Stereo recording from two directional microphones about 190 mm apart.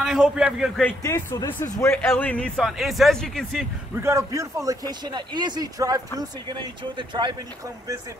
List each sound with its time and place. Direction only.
0.0 s a man's voice: 5° right (ahead or behind)
0.8 s speech: 15° left (ahead or behind)
3.9 s speech: 15° right (ahead or behind)